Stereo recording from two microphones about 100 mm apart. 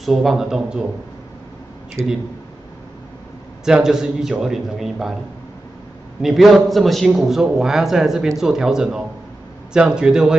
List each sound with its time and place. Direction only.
0.0 s a man's voice: centre (ahead or behind)
3.6 s a man's voice: 5° right (ahead or behind)
6.2 s a man's voice: centre (ahead or behind)